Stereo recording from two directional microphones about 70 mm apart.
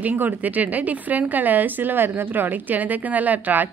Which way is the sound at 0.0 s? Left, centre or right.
Right.